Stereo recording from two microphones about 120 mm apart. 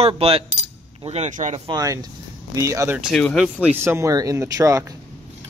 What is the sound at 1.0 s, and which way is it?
Speech, 75° right (ahead or behind).